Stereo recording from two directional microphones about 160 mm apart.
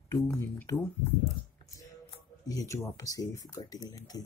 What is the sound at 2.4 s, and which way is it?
Speech, 20° left (ahead or behind).